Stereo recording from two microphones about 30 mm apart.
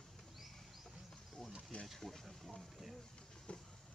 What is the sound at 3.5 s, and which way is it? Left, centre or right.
Vehicle, left.